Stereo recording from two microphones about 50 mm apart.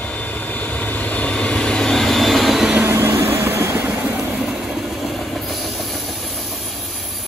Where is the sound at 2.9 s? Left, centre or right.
Right.